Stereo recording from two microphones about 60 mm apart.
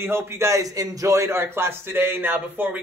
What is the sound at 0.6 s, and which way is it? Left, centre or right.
Speech, right.